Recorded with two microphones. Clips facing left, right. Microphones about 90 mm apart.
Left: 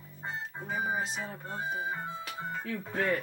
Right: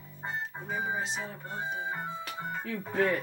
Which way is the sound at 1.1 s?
Centre (ahead or behind).